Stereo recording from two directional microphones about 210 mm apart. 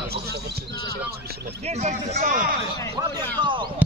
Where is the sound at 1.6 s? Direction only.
30° right (ahead or behind).